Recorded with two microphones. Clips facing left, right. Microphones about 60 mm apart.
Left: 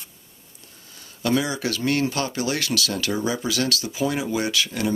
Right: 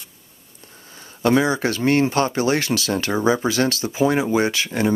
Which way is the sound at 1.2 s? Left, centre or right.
Right.